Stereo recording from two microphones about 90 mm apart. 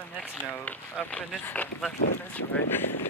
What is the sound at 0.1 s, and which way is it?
Speech, 20° left (ahead or behind).